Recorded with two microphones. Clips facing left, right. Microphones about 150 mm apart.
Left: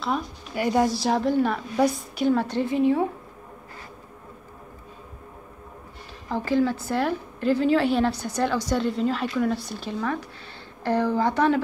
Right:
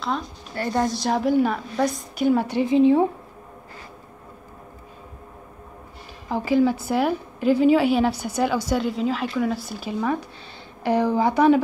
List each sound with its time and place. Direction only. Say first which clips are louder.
0.0 s a woman's voice: even; 10° left (ahead or behind)
2.3 s a woman's voice: right 4 dB; 10° right (ahead or behind); by 3.1 s 25° right (ahead or behind)
6.2 s a woman's voice: right 3 dB; 10° right (ahead or behind)